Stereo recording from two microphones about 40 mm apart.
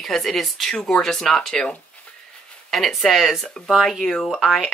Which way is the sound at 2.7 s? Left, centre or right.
Centre.